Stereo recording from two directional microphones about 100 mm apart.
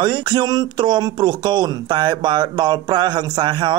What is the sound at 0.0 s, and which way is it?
Speech, 50° right (ahead or behind).